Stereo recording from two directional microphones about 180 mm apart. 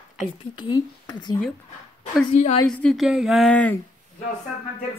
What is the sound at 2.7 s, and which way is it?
Speech, 5° left (ahead or behind).